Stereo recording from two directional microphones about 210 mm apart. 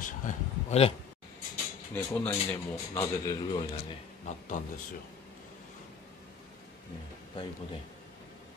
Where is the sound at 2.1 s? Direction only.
10° left (ahead or behind).